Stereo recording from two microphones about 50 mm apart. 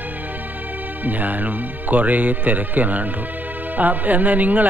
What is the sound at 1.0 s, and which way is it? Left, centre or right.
Speech, right.